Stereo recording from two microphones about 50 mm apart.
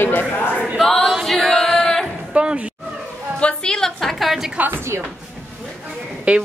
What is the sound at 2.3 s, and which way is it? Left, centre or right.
Speech, right.